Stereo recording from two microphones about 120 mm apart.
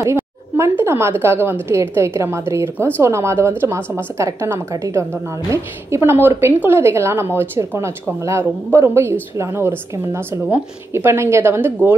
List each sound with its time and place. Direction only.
0.0 s speech: 25° right (ahead or behind)